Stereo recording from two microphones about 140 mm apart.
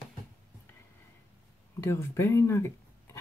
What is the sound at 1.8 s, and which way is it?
Speech, 15° left (ahead or behind).